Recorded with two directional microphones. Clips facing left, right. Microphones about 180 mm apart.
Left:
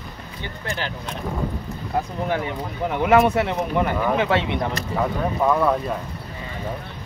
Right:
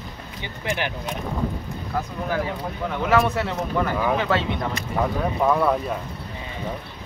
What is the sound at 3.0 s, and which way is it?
Speech, 20° left (ahead or behind).